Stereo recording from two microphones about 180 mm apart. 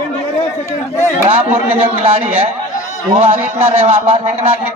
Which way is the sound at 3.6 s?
35° right (ahead or behind).